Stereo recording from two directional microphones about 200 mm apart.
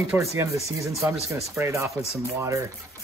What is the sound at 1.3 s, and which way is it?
Speech, 15° right (ahead or behind).